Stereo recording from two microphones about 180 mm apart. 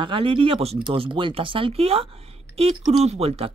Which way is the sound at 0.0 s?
30° right (ahead or behind).